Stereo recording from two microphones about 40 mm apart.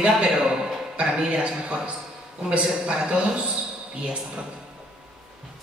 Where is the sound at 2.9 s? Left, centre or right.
Right.